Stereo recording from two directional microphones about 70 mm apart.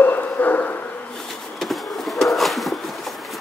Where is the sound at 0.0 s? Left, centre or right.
Left.